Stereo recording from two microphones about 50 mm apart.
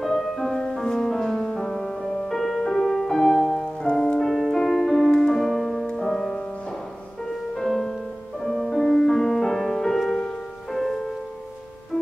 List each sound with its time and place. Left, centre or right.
0.0 s music: centre
3.9 s music: centre
7.5 s music: centre